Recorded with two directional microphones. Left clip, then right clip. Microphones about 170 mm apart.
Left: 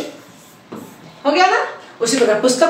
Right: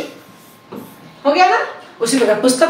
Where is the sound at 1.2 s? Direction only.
Centre (ahead or behind).